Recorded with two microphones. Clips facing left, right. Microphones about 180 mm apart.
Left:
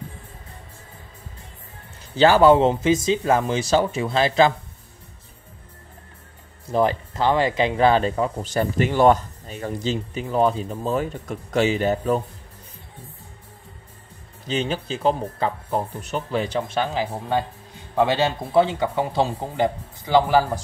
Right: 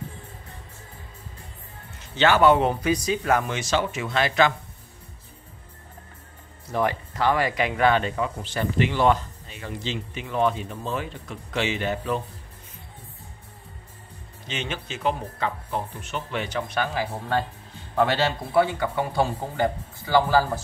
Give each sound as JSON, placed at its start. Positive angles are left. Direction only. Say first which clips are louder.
{"t": 2.1, "sound": "speech", "louder": "left 4 dB", "side_deg": 30}
{"t": 6.7, "sound": "speech", "louder": "left 5 dB", "side_deg": 30}
{"t": 14.5, "sound": "speech", "louder": "left 7 dB", "side_deg": 35}